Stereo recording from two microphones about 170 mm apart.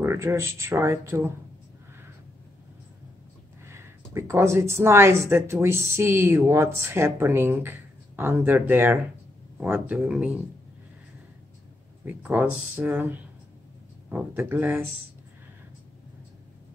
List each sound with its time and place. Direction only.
0.0 s speech: 15° right (ahead or behind)
3.6 s speech: 15° right (ahead or behind)
12.0 s speech: 10° right (ahead or behind)